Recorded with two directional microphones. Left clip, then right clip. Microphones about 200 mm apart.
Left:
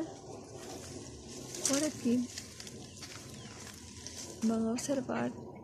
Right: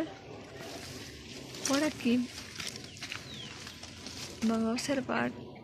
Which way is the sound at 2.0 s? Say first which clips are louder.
Right 1 dB; 15° right (ahead or behind).